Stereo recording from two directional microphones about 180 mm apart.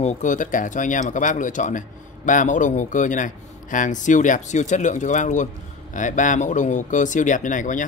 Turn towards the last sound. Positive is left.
turn(degrees=45)  # may be behind; listen again after turning